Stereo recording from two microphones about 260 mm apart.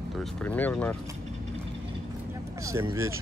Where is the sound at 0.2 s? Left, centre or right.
Centre.